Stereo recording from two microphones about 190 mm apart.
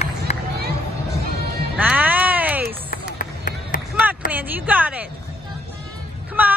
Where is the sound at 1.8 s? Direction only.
10° right (ahead or behind).